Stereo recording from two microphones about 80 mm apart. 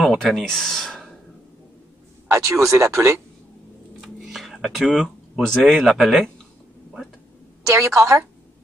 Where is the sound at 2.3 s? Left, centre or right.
Right.